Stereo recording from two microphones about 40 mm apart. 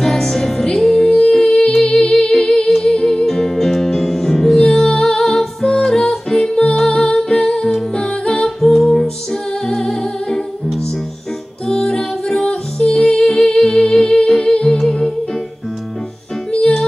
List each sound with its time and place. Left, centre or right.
0.0 s music: centre
1.0 s singing: left
1.3 s humming: centre
2.8 s music: centre
6.5 s music: centre
6.8 s music: centre
11.6 s music: centre
13.5 s humming: centre